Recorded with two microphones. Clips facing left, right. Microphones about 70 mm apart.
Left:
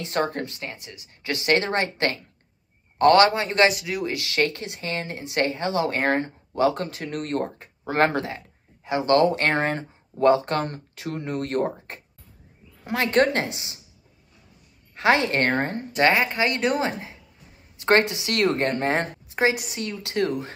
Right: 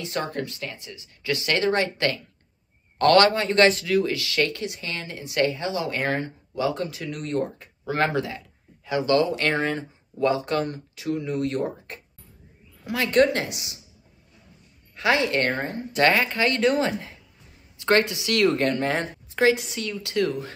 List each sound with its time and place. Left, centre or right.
0.0 s speech: left
7.5 s speech: left
12.8 s speech: left
15.0 s speech: left
15.9 s speech: left